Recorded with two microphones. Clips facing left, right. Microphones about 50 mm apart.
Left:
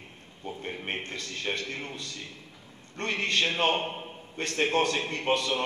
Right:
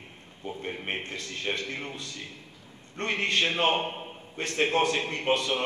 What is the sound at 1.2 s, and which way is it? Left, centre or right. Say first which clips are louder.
A man's voice: right 1 dB; right.